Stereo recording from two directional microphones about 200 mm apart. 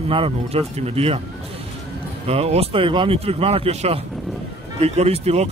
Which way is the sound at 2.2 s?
30° right (ahead or behind).